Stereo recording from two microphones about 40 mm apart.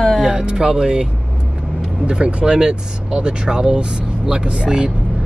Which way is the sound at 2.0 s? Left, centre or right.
Right.